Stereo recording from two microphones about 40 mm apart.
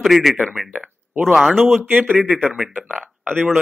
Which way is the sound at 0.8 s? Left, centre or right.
Centre.